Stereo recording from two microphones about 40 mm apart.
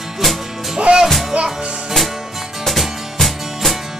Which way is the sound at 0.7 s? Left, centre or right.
Right.